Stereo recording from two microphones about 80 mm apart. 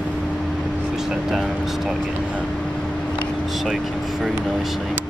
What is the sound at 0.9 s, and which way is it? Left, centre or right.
Speech, centre.